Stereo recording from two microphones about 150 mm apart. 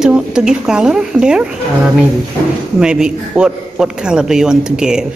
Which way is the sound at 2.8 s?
5° right (ahead or behind).